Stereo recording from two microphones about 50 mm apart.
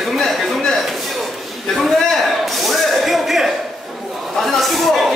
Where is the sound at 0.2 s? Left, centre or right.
Centre.